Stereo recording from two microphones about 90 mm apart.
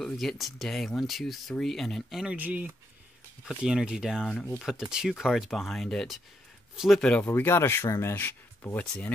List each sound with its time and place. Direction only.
0.0 s speech: 5° left (ahead or behind)
2.3 s speech: 20° right (ahead or behind)
3.4 s speech: 5° right (ahead or behind); by 8.8 s 25° left (ahead or behind)